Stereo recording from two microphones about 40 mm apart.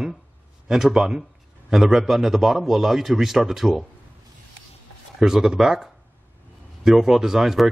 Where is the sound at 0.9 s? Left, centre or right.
Centre.